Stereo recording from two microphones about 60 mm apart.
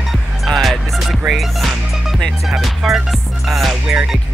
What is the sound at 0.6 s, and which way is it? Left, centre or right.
Music, centre.